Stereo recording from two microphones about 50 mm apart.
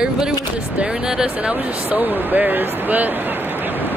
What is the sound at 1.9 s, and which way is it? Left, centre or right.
Speech, right.